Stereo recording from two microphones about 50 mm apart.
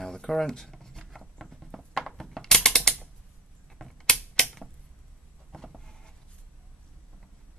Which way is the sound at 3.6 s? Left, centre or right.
Centre.